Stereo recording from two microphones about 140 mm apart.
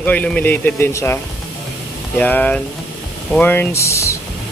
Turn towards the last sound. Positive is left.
turn(degrees=20)  # may be behind; listen again after turning